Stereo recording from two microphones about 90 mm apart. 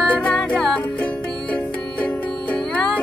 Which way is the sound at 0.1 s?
15° left (ahead or behind).